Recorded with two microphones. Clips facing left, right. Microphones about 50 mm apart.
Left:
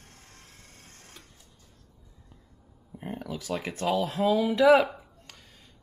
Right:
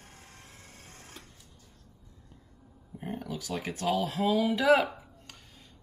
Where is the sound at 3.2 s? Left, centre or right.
Left.